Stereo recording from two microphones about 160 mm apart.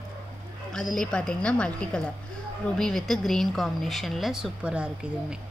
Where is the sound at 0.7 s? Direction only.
5° left (ahead or behind).